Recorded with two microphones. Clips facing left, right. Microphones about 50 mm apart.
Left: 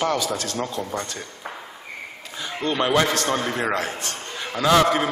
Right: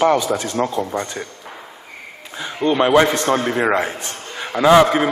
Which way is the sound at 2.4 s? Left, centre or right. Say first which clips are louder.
Right 6 dB; right.